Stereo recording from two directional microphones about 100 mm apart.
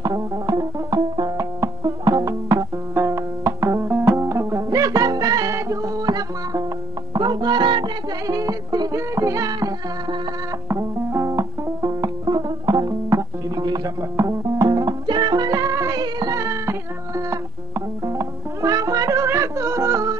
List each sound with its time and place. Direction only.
0.0 s music: 40° right (ahead or behind)
2.9 s banjo: 25° right (ahead or behind)
4.2 s music: 30° right (ahead or behind); by 7.9 s 50° right (ahead or behind)
8.3 s music: 35° right (ahead or behind)
10.7 s music: 30° right (ahead or behind)
19.2 s yodeling: 30° right (ahead or behind)